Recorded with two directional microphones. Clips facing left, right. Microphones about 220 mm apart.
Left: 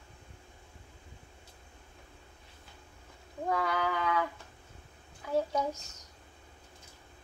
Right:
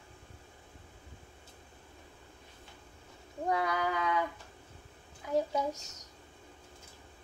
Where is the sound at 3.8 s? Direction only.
15° right (ahead or behind).